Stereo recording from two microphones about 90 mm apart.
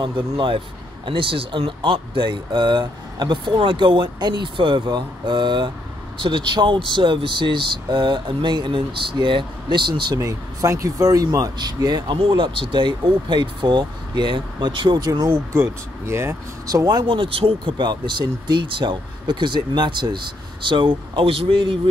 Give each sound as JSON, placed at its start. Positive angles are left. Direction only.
{"t": 0.0, "sound": "speech", "side_deg": -65}
{"t": 10.2, "sound": "speech", "side_deg": -35}
{"t": 11.5, "sound": "speech", "side_deg": -50}
{"t": 12.2, "sound": "speech", "side_deg": -75}
{"t": 15.2, "sound": "speech", "side_deg": -30}
{"t": 16.6, "sound": "speech", "side_deg": -45}
{"t": 17.0, "sound": "speech", "side_deg": -75}